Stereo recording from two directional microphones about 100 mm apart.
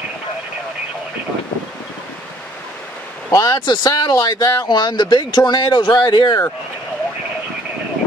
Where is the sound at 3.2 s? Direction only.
35° left (ahead or behind).